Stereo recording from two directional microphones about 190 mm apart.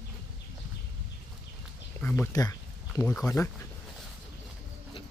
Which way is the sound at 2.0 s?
10° left (ahead or behind).